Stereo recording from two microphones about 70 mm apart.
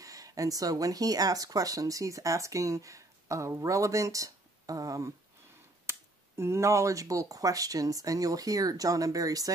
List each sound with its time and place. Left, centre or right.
0.0 s speech: right
5.9 s speech: right